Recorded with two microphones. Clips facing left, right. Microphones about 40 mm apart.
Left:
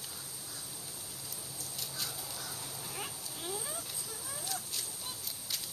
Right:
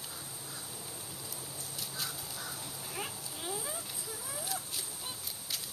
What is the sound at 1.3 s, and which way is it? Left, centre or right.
Fowl, centre.